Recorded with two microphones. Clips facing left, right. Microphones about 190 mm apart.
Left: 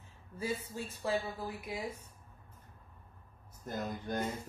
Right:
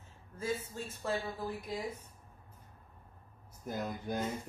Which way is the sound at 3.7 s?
10° right (ahead or behind).